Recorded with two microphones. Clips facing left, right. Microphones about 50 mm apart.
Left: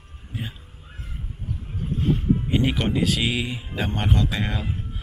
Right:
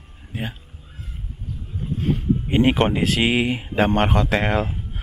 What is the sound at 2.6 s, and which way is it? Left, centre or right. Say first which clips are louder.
Speech: right 5 dB; right.